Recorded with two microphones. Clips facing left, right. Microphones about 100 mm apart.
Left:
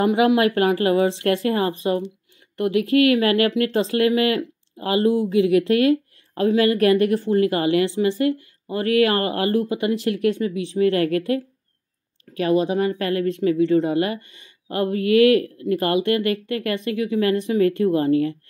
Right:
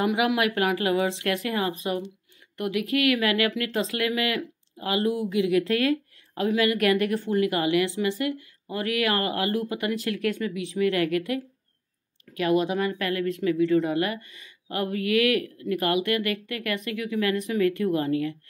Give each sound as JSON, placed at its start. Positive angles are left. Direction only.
{"t": 0.0, "sound": "speech", "side_deg": 35}